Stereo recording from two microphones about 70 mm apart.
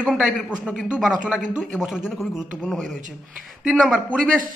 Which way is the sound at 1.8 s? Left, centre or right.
Centre.